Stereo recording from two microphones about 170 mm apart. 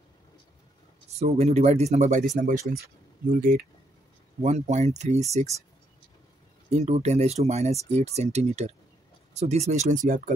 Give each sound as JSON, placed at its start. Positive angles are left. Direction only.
{"t": 1.1, "sound": "speech", "side_deg": -40}
{"t": 3.3, "sound": "speech", "side_deg": -55}
{"t": 4.4, "sound": "speech", "side_deg": -40}
{"t": 6.7, "sound": "speech", "side_deg": -40}